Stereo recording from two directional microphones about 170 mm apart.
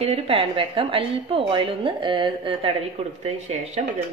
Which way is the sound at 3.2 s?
40° right (ahead or behind).